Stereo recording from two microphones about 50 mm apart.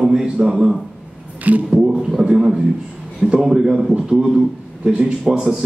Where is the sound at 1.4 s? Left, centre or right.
Right.